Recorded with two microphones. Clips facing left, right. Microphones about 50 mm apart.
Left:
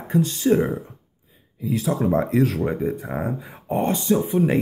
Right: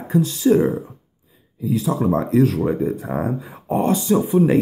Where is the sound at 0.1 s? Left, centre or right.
Left.